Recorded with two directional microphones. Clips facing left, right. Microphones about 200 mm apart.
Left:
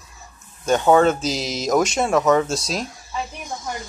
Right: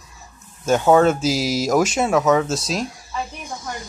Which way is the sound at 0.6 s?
5° right (ahead or behind).